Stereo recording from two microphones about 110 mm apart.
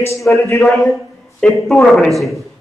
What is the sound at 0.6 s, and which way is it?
Speech, centre (ahead or behind).